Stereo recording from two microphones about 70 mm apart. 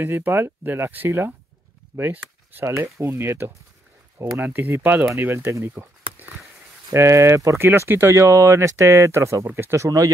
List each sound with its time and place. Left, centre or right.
0.0 s speech: right
5.5 s a sound: right
6.9 s speech: right
8.2 s speech: right
9.8 s speech: right